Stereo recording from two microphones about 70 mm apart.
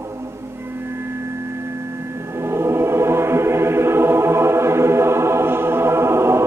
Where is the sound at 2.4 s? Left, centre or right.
Right.